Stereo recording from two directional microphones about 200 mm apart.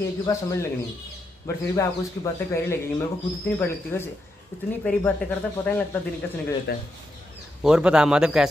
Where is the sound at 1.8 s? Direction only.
15° left (ahead or behind).